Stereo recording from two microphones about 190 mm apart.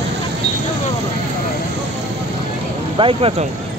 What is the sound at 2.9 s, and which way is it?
Speech, 30° right (ahead or behind).